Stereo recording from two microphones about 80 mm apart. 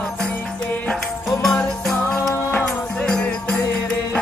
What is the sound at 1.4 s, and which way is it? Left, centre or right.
Music, centre.